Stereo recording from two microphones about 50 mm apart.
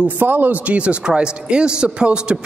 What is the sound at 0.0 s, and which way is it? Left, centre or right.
Speech, right.